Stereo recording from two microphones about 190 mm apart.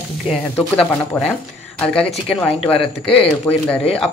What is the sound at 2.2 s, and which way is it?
Speech, 30° left (ahead or behind).